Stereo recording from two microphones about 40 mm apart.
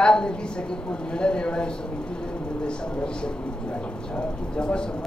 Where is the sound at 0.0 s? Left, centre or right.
Left.